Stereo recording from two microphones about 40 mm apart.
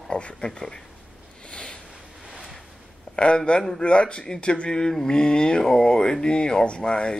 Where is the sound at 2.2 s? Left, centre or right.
Centre.